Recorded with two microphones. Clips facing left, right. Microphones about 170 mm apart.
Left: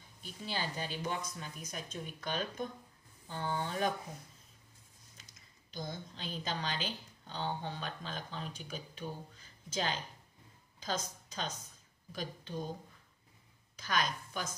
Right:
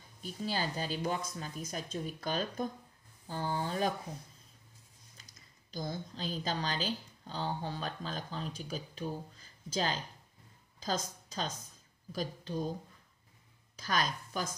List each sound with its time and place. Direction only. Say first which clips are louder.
0.2 s a woman's voice: right 4 dB; 40° right (ahead or behind)
5.7 s a woman's voice: right 4 dB; 35° right (ahead or behind)
13.7 s a woman's voice: right 1 dB; 35° right (ahead or behind)